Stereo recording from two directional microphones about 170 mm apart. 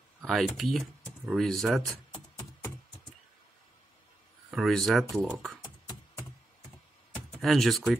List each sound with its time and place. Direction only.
0.3 s speech: centre (ahead or behind)
4.5 s speech: centre (ahead or behind)
5.6 s beatboxing: 25° left (ahead or behind)
7.2 s speech: 5° left (ahead or behind)